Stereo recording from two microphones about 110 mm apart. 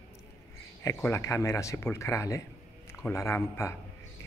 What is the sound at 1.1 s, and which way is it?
Speech, 25° left (ahead or behind).